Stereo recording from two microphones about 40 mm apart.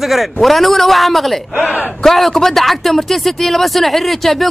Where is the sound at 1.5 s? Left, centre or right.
Right.